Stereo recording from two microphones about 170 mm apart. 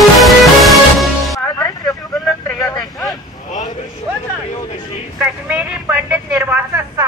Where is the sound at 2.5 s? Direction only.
10° left (ahead or behind).